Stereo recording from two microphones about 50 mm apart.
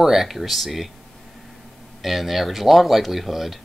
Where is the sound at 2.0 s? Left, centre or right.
Centre.